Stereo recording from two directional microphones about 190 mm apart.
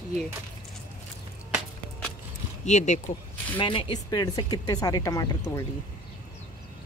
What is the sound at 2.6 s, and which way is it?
Speech, 40° left (ahead or behind).